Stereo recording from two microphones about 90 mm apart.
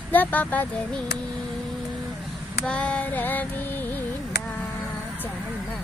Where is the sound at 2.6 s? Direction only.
15° left (ahead or behind).